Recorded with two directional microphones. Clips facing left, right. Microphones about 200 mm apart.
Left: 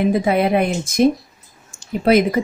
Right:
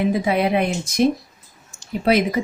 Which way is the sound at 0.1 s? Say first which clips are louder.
Left 3 dB; 50° left (ahead or behind).